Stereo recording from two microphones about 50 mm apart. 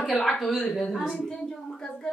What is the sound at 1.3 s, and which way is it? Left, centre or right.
Speech, centre.